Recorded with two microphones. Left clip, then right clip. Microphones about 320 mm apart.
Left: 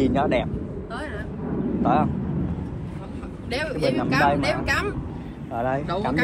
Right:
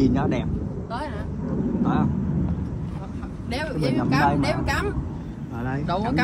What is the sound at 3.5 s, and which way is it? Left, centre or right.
Vehicle, right.